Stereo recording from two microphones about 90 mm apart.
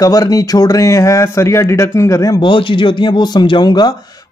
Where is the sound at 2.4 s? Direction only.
65° left (ahead or behind).